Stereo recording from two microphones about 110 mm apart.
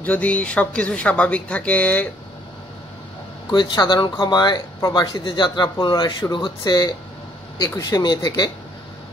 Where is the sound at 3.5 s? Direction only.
45° left (ahead or behind).